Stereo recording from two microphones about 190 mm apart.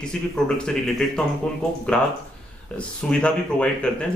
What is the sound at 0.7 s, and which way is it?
Speech, 5° left (ahead or behind).